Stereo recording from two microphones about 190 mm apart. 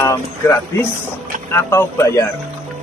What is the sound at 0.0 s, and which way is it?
Speech, 15° left (ahead or behind).